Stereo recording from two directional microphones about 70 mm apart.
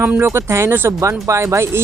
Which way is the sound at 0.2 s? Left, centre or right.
Right.